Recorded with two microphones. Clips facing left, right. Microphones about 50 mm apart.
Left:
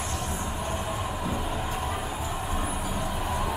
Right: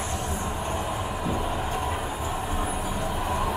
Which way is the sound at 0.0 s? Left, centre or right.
Centre.